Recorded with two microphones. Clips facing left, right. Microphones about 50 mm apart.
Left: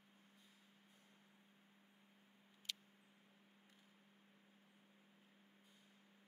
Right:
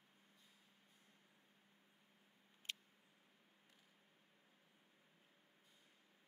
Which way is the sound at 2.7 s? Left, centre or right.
Right.